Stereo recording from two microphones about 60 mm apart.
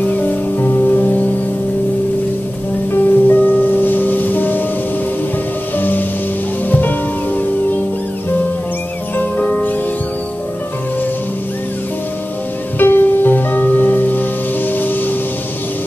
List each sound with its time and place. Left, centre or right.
0.0 s music: left
2.9 s music: left
5.8 s music: left
9.1 s music: left
12.7 s music: left